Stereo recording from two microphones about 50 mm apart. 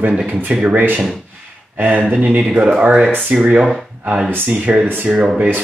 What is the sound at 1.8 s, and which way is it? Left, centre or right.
Speech, right.